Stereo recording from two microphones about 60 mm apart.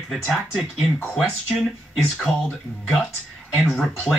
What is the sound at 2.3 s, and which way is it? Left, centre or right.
Speech, centre.